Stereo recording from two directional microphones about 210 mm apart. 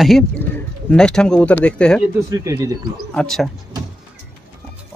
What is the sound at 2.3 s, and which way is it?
Speech, 15° right (ahead or behind).